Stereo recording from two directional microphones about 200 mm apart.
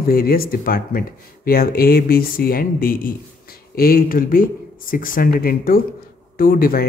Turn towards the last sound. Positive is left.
turn(degrees=45)  # may be behind; listen again after turning